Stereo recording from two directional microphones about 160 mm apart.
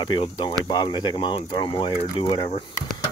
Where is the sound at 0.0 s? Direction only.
30° left (ahead or behind).